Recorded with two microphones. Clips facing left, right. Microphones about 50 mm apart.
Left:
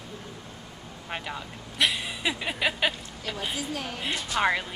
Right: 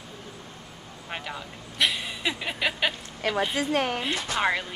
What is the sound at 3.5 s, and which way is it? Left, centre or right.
Speech, right.